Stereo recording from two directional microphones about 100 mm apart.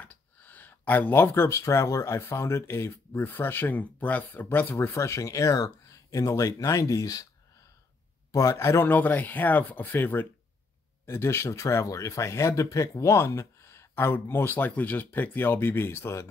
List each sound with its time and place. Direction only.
0.0 s speech: 15° left (ahead or behind); by 7.2 s 35° left (ahead or behind)
8.3 s speech: 35° left (ahead or behind)